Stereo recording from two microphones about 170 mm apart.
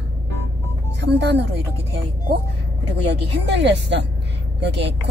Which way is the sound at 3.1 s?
90° right.